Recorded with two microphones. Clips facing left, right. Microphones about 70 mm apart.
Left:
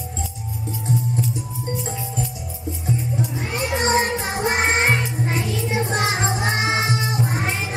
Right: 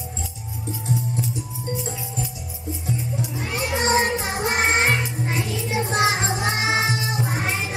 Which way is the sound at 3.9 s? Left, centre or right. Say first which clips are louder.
Left 1 dB; centre.